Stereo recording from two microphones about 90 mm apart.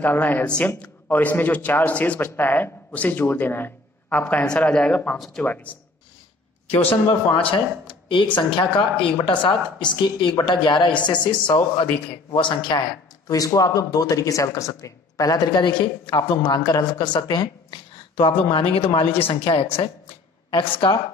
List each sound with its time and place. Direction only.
0.0 s a man's voice: 20° left (ahead or behind)
8.1 s speech: 65° left (ahead or behind)
13.3 s speech: 40° left (ahead or behind); by 16.2 s 60° left (ahead or behind)
16.2 s speech: 50° left (ahead or behind)
18.1 s a woman's voice: 70° left (ahead or behind); by 19.9 s 90° left
20.5 s speech: 65° left (ahead or behind)